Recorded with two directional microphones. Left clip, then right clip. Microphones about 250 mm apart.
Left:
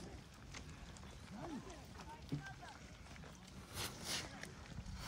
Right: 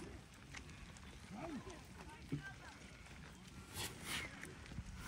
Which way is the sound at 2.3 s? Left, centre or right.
Left.